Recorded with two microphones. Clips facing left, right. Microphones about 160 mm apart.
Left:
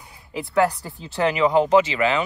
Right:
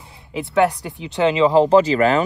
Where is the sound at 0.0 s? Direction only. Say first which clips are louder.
Right 3 dB; 25° right (ahead or behind).